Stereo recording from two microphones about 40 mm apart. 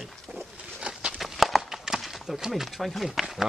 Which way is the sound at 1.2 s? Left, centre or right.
Centre.